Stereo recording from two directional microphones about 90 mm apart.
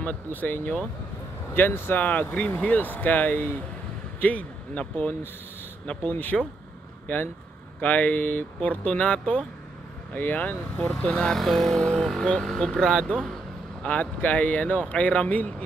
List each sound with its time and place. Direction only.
0.0 s speech: 20° left (ahead or behind)
7.8 s speech: 15° left (ahead or behind)